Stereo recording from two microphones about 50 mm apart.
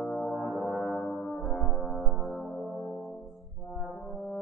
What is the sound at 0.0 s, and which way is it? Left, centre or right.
Music, centre.